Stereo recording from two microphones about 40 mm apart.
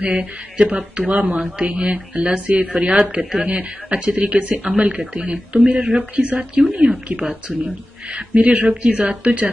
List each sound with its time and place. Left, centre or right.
0.0 s speech: right
0.6 s speech: right
1.0 s speech: right